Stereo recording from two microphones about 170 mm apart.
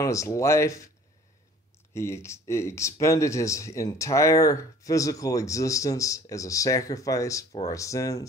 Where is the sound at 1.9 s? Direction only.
15° left (ahead or behind).